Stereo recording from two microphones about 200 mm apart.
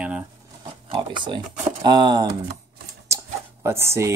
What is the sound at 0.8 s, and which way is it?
Speech, 25° right (ahead or behind).